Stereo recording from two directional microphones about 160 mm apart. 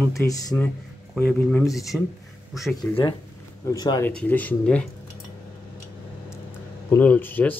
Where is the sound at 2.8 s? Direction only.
30° left (ahead or behind).